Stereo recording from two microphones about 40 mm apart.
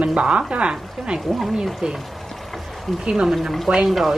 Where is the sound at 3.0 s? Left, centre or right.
Centre.